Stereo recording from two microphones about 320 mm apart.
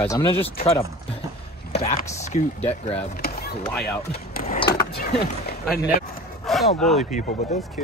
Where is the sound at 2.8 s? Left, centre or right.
Left.